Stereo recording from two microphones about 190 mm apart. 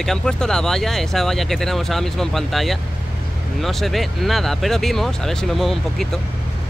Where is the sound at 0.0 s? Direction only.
Centre (ahead or behind).